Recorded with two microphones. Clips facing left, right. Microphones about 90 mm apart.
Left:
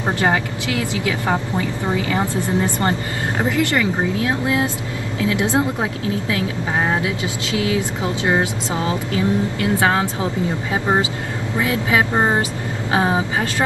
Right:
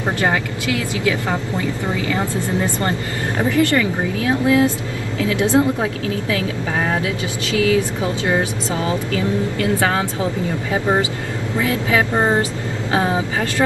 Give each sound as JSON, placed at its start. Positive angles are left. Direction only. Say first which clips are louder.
{"t": 0.2, "sound": "speech", "louder": "even", "side_deg": 20}